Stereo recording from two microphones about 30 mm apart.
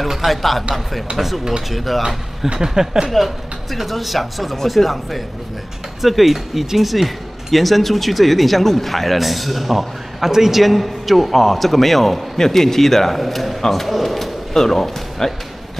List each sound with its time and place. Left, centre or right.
0.1 s speech: centre
1.7 s speech: centre
2.6 s speech: centre
3.1 s speech: centre
7.5 s a man's voice: centre